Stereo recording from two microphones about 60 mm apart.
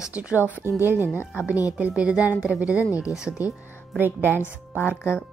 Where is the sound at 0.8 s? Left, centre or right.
Right.